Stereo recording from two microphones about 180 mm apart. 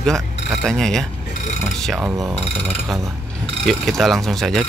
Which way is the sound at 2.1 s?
20° right (ahead or behind).